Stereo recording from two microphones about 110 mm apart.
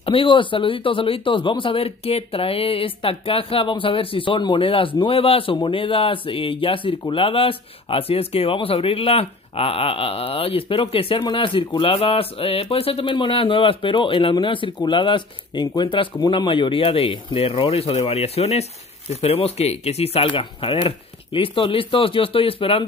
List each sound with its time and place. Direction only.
0.0 s speech: 55° left (ahead or behind)